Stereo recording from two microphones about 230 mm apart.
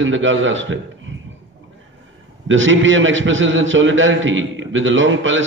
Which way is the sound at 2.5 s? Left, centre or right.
Right.